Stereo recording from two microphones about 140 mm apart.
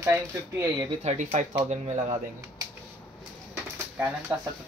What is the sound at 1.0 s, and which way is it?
Speech, 60° right (ahead or behind).